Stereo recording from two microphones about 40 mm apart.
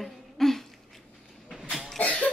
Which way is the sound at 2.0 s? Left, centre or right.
Left.